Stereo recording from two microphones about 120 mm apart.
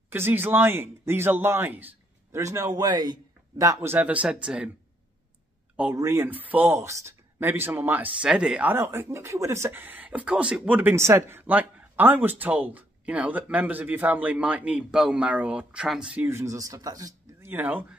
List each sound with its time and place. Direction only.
0.1 s speech: 20° right (ahead or behind)
2.7 s speech: 35° right (ahead or behind); by 4.6 s 10° right (ahead or behind)
5.9 s speech: 20° right (ahead or behind)
8.7 s speech: 20° right (ahead or behind)
17.4 s speech: 15° right (ahead or behind)